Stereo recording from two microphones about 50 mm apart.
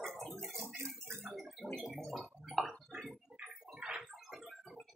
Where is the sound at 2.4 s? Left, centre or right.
Centre.